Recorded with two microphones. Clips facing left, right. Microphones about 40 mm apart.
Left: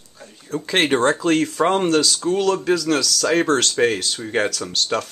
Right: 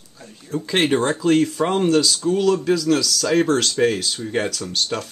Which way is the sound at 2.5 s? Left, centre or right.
Left.